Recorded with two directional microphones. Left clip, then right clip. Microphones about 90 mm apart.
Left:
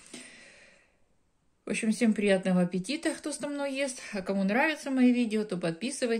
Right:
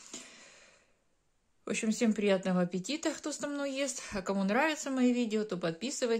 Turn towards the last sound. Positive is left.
turn(degrees=-35)  # may be behind; listen again after turning